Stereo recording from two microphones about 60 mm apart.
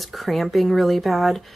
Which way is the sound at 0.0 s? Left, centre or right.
Centre.